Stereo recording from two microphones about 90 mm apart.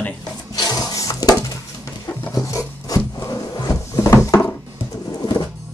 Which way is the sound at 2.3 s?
35° left (ahead or behind).